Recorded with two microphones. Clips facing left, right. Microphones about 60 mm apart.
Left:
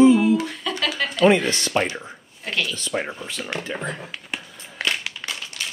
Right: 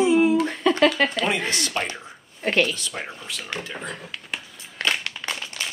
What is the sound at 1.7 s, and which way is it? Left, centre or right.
Speech, left.